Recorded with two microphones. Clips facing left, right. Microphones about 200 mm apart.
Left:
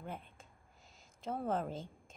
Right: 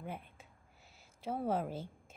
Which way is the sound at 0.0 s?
10° right (ahead or behind).